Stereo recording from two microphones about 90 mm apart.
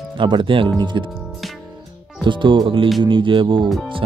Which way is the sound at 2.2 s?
65° right (ahead or behind).